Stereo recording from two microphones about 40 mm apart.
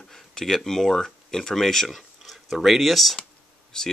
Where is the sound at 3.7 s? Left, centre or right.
Centre.